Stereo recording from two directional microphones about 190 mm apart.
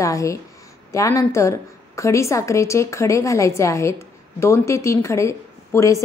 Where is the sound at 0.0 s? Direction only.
15° left (ahead or behind).